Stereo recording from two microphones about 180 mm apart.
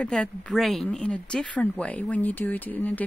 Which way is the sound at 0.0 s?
5° left (ahead or behind).